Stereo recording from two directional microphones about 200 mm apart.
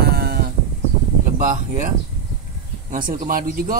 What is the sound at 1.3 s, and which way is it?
Speech, 40° right (ahead or behind).